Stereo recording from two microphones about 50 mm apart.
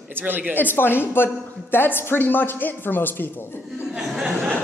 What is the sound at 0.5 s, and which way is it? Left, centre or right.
A woman's voice, left.